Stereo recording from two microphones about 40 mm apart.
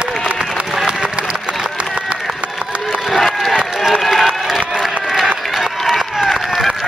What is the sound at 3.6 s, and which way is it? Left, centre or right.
Run, centre.